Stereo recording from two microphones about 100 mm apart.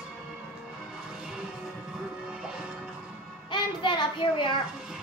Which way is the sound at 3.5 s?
55° left (ahead or behind).